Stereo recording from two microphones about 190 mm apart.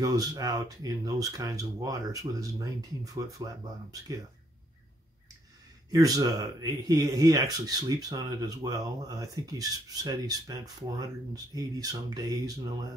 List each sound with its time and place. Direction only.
0.0 s speech: 20° right (ahead or behind)
5.9 s speech: 20° right (ahead or behind)